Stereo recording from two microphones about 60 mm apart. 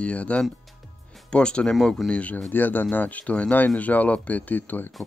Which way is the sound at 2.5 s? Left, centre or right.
Left.